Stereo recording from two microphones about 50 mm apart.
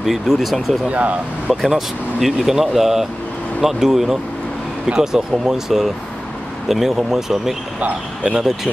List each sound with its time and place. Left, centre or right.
0.0 s speech: centre
0.8 s speech: right
1.5 s speech: centre
8.2 s speech: centre